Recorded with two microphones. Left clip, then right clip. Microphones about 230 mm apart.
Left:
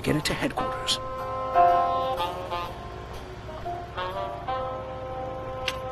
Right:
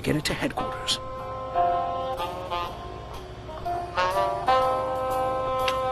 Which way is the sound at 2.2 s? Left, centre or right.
Centre.